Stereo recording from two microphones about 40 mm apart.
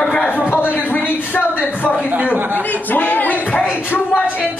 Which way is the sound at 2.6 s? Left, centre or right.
Left.